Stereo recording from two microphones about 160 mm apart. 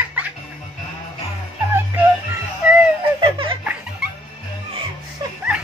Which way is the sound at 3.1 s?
35° right (ahead or behind).